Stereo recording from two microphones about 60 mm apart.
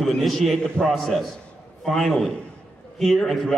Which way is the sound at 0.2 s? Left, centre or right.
Centre.